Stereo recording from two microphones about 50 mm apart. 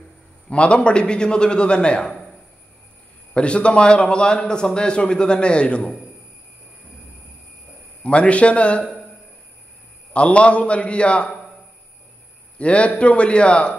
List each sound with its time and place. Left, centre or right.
0.5 s a man's voice: left
3.3 s a man's voice: left
8.0 s a man's voice: left
10.1 s a man's voice: left
12.5 s a man's voice: left